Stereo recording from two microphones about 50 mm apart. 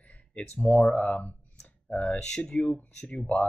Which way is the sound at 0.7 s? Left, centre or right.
Left.